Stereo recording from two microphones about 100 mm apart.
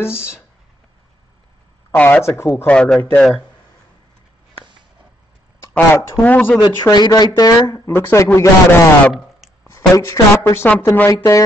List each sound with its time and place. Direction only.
0.0 s speech: 25° left (ahead or behind)
2.0 s speech: 15° left (ahead or behind)
2.2 s speech: 25° left (ahead or behind)
5.6 s speech: 30° left (ahead or behind)
6.2 s speech: 15° left (ahead or behind)
6.6 s a woman's voice: 45° left (ahead or behind); by 10.7 s 25° left (ahead or behind)